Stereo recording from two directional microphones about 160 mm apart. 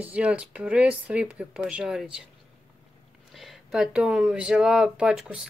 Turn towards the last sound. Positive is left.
turn(degrees=-5)  # may be behind; listen again after turning